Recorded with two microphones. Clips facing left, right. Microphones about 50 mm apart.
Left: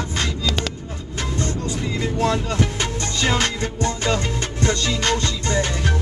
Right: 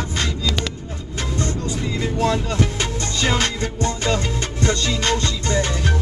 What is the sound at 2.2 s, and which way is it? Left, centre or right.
Music, left.